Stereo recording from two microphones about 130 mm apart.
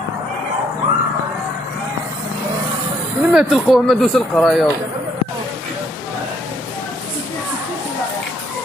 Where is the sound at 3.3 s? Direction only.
Centre (ahead or behind).